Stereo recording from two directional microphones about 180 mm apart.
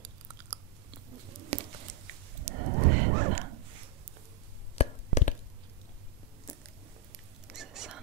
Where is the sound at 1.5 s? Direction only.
35° right (ahead or behind).